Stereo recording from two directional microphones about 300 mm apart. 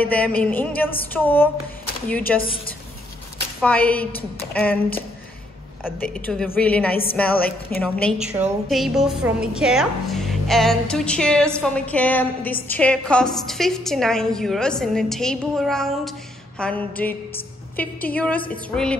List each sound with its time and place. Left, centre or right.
0.0 s a woman's voice: centre
2.4 s a woman's voice: centre
3.6 s a woman's voice: centre